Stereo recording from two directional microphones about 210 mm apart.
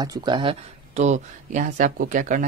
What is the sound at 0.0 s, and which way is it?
Speech, 20° right (ahead or behind).